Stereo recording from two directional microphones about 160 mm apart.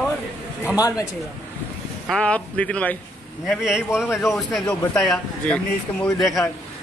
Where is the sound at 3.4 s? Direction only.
Centre (ahead or behind).